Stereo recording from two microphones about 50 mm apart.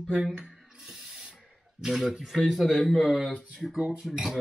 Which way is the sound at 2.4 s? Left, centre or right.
Centre.